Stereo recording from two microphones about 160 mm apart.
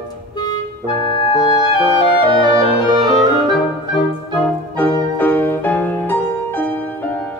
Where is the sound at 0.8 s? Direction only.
30° right (ahead or behind).